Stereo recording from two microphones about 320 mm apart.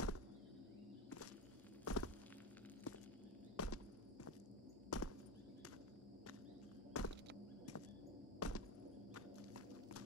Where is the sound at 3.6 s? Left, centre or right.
Left.